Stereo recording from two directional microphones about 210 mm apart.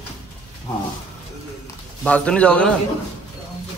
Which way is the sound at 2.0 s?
5° left (ahead or behind).